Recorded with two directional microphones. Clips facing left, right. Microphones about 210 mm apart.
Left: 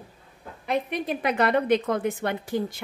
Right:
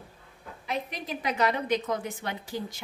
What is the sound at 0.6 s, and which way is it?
A woman's voice, 55° left (ahead or behind).